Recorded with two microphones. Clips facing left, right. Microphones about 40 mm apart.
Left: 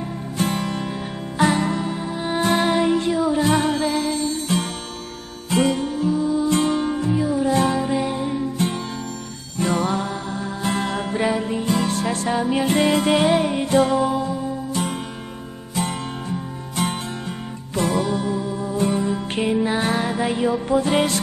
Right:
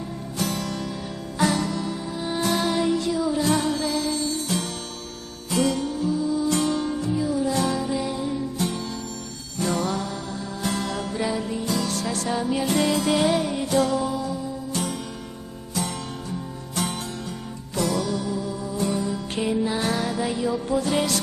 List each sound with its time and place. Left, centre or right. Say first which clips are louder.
0.4 s music: left 4 dB; left